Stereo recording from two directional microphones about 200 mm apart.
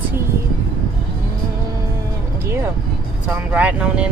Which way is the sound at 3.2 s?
5° right (ahead or behind).